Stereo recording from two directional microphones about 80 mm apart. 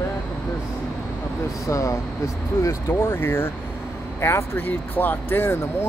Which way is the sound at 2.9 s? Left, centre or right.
Left.